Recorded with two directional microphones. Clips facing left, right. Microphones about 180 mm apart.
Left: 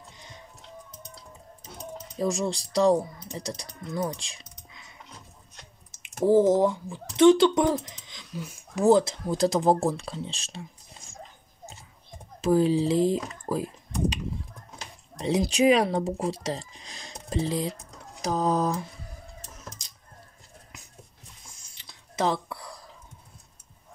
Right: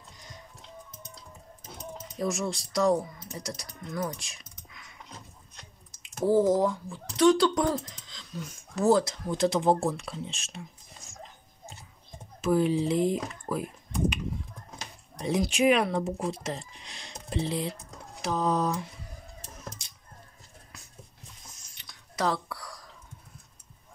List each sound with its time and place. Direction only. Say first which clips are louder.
2.1 s speech: left 3 dB; 30° left (ahead or behind)
6.2 s speech: left 3 dB; 20° left (ahead or behind)
7.7 s speech: left 3 dB; 10° left (ahead or behind)
9.3 s speech: left 2 dB; 40° left (ahead or behind)
12.4 s speech: left 3 dB; 35° left (ahead or behind)
15.1 s speech: left 3 dB; 30° left (ahead or behind)
21.5 s whispering: even; 30° left (ahead or behind)